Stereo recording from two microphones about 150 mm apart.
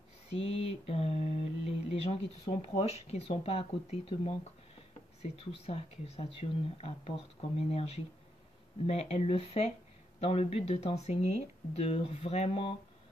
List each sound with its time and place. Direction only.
0.4 s mantra: 40° left (ahead or behind)
5.2 s speech: 40° left (ahead or behind)
8.8 s mantra: 45° left (ahead or behind)